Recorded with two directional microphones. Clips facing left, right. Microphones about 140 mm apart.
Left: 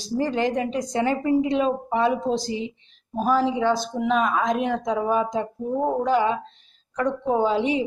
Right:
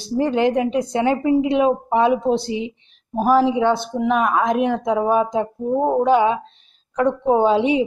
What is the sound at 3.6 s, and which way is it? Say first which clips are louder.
Speech: right 4 dB; 60° right (ahead or behind).